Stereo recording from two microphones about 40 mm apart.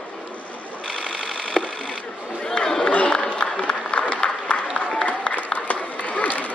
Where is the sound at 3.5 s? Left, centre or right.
Left.